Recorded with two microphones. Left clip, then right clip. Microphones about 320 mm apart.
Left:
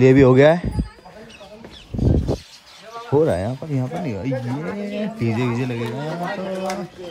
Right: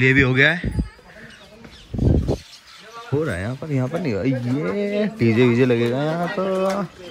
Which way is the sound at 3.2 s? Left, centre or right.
Centre.